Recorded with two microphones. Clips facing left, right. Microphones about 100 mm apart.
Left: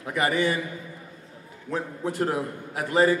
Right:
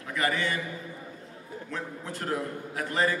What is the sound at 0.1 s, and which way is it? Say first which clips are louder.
Speech: left 5 dB; 20° left (ahead or behind).